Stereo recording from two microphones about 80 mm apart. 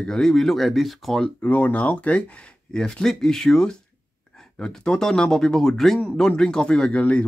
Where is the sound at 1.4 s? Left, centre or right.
Centre.